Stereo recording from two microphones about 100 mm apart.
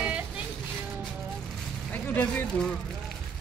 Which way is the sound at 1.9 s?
15° left (ahead or behind).